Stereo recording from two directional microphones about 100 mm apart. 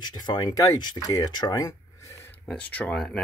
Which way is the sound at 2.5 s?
10° left (ahead or behind).